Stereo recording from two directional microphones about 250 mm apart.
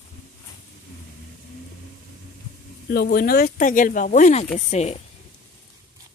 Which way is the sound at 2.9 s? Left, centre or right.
Left.